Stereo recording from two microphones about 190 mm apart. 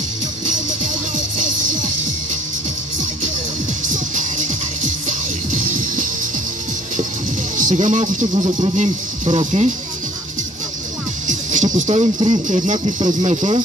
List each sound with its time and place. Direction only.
3.9 s music: 40° right (ahead or behind)
7.5 s speech: 40° right (ahead or behind)
11.2 s music: 40° right (ahead or behind)
12.4 s speech: 40° right (ahead or behind)